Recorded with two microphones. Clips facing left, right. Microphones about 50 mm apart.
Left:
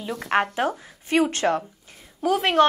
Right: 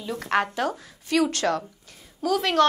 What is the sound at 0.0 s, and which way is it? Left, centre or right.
A woman's voice, left.